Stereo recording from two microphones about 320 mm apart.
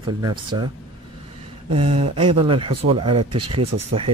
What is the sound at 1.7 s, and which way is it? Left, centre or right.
Speech, centre.